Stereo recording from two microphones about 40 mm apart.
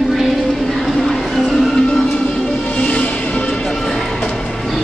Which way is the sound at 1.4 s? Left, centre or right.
Centre.